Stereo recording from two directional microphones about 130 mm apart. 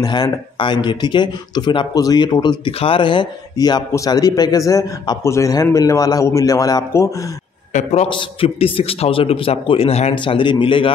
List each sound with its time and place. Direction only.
0.0 s speech: 35° left (ahead or behind)
7.7 s a man's voice: 60° left (ahead or behind)
8.1 s a man's voice: 40° left (ahead or behind)
10.1 s a man's voice: 40° left (ahead or behind)